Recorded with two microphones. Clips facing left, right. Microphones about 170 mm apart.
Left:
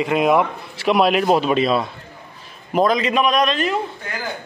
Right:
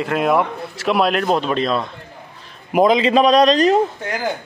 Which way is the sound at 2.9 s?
30° right (ahead or behind).